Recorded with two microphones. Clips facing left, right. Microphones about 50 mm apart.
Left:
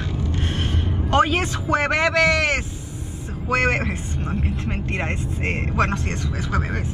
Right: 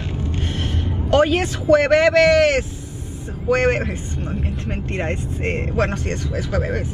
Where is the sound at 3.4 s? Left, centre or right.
Left.